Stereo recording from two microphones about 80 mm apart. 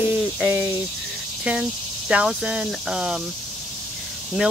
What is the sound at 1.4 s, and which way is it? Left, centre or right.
Speech, centre.